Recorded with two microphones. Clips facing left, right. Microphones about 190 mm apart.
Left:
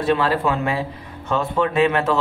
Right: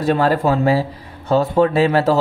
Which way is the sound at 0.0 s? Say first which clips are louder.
Right 3 dB; 40° right (ahead or behind).